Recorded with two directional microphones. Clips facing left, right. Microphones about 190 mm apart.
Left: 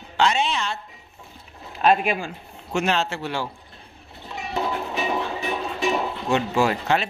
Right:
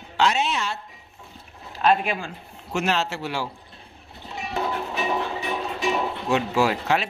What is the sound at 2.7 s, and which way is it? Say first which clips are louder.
Speech: left 1 dB; 5° right (ahead or behind).